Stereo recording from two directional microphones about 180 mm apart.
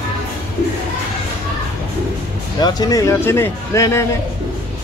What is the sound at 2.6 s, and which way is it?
Speech, 20° left (ahead or behind).